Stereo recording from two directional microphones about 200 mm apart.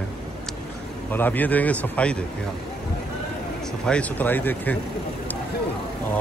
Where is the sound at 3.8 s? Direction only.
5° left (ahead or behind).